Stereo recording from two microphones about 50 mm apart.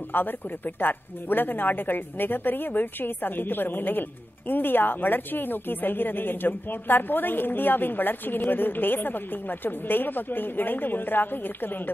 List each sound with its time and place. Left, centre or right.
0.1 s a woman's voice: left